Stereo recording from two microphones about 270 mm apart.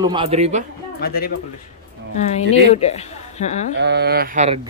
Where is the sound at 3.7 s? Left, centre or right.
Right.